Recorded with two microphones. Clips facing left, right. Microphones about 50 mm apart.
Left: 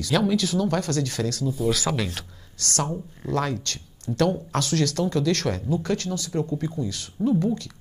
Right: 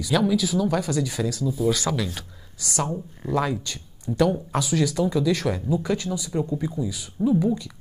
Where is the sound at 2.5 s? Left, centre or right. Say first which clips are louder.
Even; centre.